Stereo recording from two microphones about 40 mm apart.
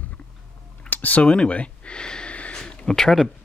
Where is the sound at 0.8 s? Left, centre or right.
Left.